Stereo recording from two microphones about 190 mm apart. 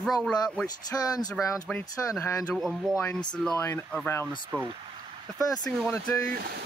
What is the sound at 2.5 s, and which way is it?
Speech, centre (ahead or behind).